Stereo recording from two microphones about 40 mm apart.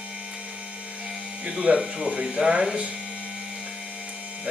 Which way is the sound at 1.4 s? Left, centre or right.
Right.